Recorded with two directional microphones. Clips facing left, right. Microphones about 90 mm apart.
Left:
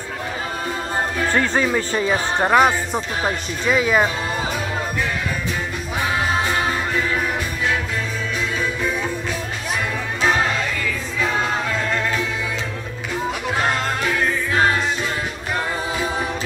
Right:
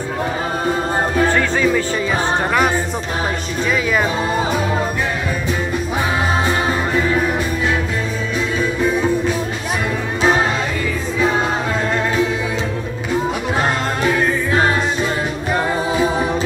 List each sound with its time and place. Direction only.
1.3 s speech: 35° left (ahead or behind)
10.2 s music: 20° right (ahead or behind)
14.0 s music: 30° right (ahead or behind)